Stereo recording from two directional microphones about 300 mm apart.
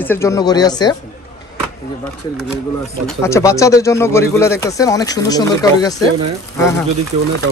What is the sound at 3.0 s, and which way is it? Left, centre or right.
Speech, centre.